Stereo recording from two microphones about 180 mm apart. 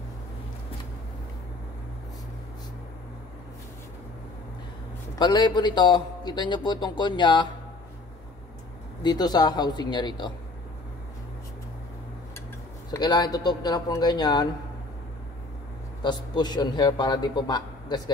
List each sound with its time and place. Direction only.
5.2 s a man's voice: 25° left (ahead or behind)
9.0 s a man's voice: 20° left (ahead or behind)
12.9 s a man's voice: 20° left (ahead or behind)
16.0 s a man's voice: 25° left (ahead or behind)